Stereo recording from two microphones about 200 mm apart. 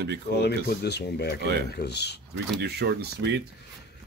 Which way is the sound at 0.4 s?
55° left (ahead or behind).